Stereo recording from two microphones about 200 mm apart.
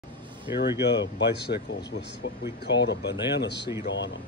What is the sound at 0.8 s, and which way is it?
Speech, 55° left (ahead or behind).